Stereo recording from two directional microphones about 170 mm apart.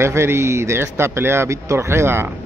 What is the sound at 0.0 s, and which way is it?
Speech, 15° right (ahead or behind).